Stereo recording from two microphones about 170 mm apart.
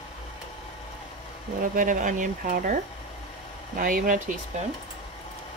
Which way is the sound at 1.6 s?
50° right (ahead or behind).